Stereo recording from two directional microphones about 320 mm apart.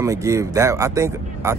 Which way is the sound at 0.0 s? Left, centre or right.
Centre.